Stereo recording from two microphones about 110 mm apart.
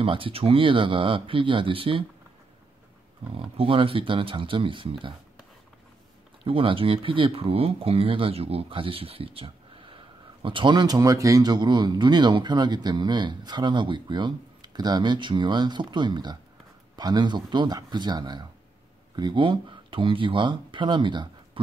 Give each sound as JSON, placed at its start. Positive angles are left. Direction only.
{"t": 0.0, "sound": "speech", "side_deg": -55}
{"t": 3.3, "sound": "speech", "side_deg": -55}
{"t": 6.4, "sound": "speech", "side_deg": -55}